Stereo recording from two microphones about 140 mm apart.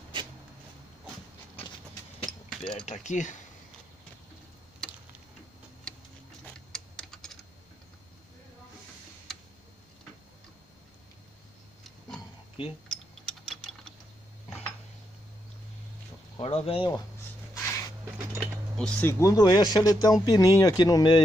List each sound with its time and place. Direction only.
2.7 s speech: 55° left (ahead or behind)
6.4 s typing: 5° left (ahead or behind)
16.3 s speech: 45° left (ahead or behind)
17.6 s a sound: 20° left (ahead or behind)
18.8 s speech: 15° left (ahead or behind)